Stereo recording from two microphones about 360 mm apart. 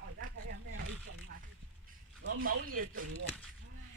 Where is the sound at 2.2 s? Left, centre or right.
Right.